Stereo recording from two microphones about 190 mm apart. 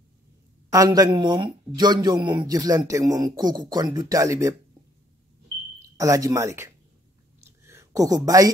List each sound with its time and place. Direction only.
0.7 s speech: 20° right (ahead or behind)
5.8 s speech: 15° right (ahead or behind)
7.6 s a sound: 15° right (ahead or behind)